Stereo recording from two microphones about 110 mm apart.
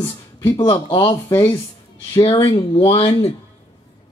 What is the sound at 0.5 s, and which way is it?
Speech, 45° left (ahead or behind).